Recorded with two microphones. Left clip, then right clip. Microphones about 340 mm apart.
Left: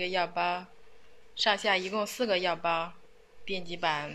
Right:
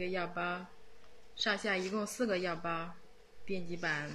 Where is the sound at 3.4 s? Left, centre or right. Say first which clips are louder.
Left 5 dB; left.